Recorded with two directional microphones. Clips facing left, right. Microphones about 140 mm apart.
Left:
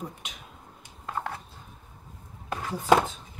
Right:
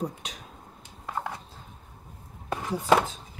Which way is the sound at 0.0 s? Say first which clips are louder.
Right 6 dB; 35° right (ahead or behind).